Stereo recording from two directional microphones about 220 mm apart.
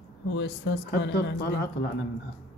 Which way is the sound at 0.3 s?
50° left (ahead or behind).